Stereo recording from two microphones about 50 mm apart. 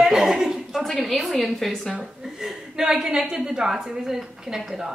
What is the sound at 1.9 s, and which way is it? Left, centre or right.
A woman's voice, centre.